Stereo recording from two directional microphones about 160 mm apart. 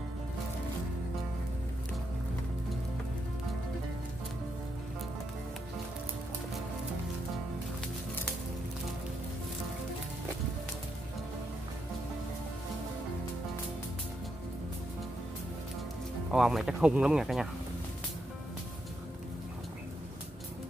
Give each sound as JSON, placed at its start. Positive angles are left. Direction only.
{"t": 16.3, "sound": "speech", "side_deg": -5}